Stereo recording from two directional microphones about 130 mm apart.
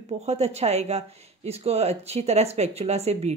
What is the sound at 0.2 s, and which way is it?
Speech, 55° right (ahead or behind).